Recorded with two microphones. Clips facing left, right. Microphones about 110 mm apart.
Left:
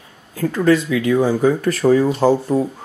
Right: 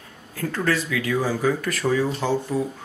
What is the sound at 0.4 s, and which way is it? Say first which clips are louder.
Speech: left 9 dB; 10° left (ahead or behind).